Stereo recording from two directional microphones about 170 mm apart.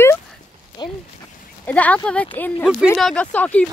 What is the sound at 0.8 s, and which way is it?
Speech, 25° left (ahead or behind).